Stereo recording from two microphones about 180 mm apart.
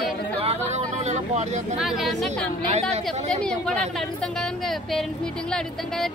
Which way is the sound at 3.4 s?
5° left (ahead or behind).